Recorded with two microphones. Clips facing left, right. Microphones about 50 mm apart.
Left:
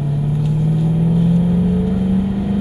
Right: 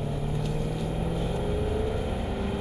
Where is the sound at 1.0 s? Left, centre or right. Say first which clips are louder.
Left 14 dB; centre.